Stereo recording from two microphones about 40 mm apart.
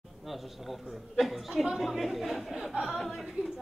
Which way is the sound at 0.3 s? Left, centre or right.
Centre.